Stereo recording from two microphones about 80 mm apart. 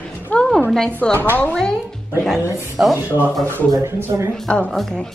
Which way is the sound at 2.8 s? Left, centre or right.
Centre.